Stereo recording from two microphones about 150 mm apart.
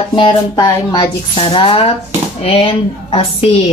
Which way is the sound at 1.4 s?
35° left (ahead or behind).